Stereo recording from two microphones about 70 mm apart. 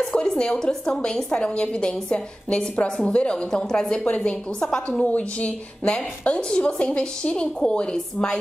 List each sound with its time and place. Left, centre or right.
0.0 s a woman's voice: centre
5.0 s a woman's voice: centre